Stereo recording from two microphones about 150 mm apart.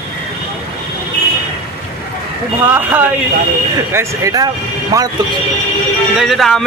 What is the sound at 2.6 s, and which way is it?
Speech, 15° right (ahead or behind).